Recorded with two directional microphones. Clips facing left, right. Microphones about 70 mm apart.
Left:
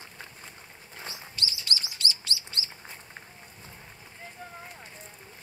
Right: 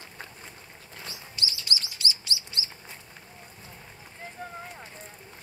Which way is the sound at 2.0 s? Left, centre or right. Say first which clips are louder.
Right 1 dB; centre.